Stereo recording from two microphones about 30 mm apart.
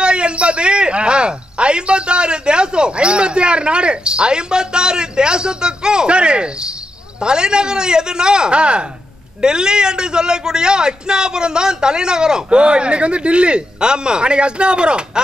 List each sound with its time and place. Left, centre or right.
0.0 s a man's voice: right